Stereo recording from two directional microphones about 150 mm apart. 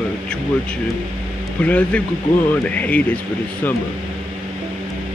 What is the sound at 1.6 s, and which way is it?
A man's voice, 10° left (ahead or behind).